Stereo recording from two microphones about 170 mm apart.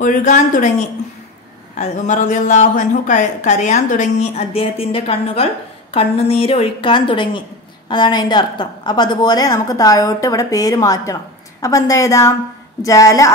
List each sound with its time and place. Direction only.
0.0 s a woman's voice: 45° left (ahead or behind); by 13.3 s 20° left (ahead or behind)